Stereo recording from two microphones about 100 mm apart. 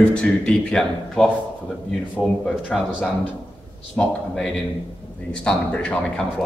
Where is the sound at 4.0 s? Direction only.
15° left (ahead or behind).